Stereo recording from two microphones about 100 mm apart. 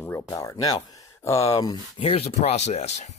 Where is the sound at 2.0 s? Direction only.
75° left (ahead or behind).